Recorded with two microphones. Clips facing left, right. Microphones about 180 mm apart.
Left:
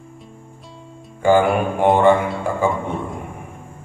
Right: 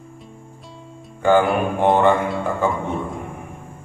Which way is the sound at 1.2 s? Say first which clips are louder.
Left 1 dB; 5° left (ahead or behind).